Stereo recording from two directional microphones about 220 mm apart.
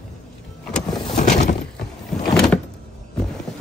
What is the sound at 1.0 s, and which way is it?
Vehicle, 30° left (ahead or behind).